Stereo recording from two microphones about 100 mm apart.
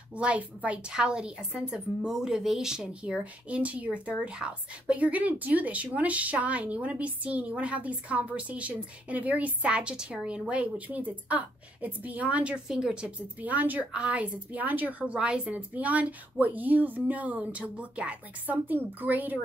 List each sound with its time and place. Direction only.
0.1 s speech: 15° right (ahead or behind)